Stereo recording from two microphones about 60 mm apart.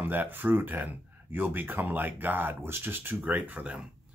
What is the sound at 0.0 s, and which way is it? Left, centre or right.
Speech, right.